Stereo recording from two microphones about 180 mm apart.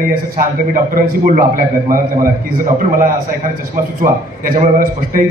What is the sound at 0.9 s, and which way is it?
A man's voice, 50° right (ahead or behind).